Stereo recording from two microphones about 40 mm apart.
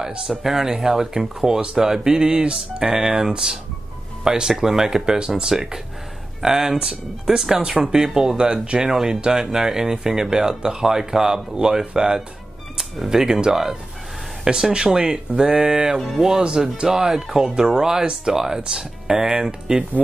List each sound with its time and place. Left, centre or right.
0.3 s speech: centre